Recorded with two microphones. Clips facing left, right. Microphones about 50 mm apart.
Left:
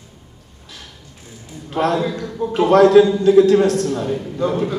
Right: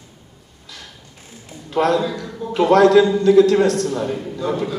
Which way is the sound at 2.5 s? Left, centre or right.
Right.